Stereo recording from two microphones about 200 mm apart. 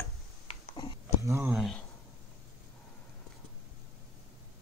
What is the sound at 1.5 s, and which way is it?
Speech, centre (ahead or behind).